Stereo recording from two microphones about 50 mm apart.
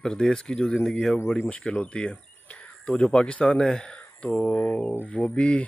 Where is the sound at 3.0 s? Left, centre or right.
Centre.